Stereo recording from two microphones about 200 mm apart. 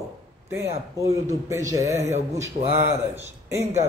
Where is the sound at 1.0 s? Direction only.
15° right (ahead or behind).